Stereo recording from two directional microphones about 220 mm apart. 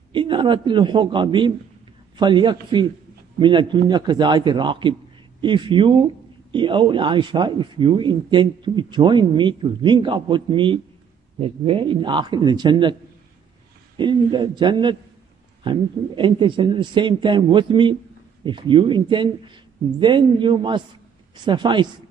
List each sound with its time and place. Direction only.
0.1 s a man's voice: 20° right (ahead or behind)
13.9 s a man's voice: 20° right (ahead or behind)